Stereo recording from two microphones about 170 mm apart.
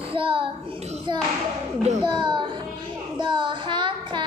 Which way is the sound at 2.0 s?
30° right (ahead or behind).